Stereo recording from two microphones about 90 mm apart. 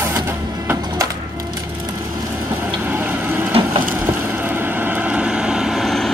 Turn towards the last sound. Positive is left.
turn(degrees=0)  # may be behind; listen again after turning